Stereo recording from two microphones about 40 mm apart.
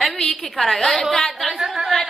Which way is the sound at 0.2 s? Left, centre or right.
Centre.